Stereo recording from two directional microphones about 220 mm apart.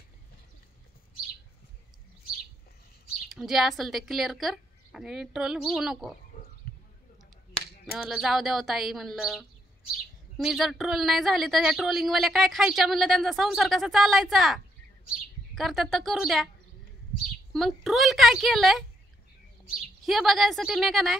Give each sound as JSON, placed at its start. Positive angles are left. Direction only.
{"t": 3.3, "sound": "speech", "side_deg": 0}
{"t": 6.7, "sound": "a sound", "side_deg": 40}
{"t": 7.8, "sound": "speech", "side_deg": 0}
{"t": 17.5, "sound": "speech", "side_deg": 0}
{"t": 20.1, "sound": "speech", "side_deg": 0}